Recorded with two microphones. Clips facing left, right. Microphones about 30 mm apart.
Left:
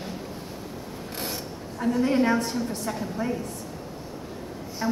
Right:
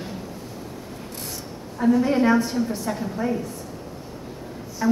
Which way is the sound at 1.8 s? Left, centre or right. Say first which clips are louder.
Right 4 dB; centre.